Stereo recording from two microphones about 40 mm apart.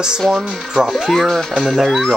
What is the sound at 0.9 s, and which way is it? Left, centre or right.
Speech, centre.